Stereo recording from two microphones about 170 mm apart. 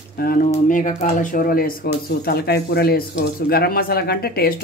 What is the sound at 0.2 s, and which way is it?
Speech, 55° left (ahead or behind).